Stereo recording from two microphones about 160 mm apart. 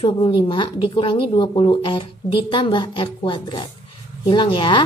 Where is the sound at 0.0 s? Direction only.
30° left (ahead or behind).